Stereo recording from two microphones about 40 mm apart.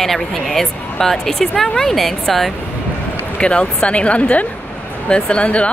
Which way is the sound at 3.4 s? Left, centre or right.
Left.